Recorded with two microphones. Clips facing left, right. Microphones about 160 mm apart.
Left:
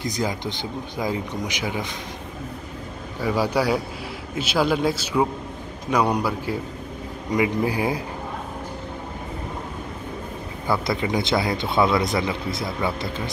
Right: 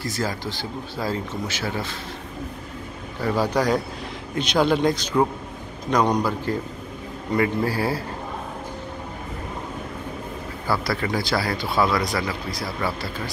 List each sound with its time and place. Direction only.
0.0 s speech: 20° left (ahead or behind)
3.2 s a man's voice: 10° left (ahead or behind)
10.7 s speech: 20° left (ahead or behind)